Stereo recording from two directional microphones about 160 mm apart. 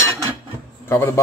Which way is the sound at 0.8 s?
15° left (ahead or behind).